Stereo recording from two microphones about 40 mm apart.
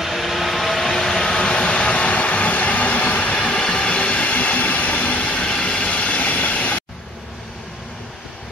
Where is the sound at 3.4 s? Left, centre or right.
Left.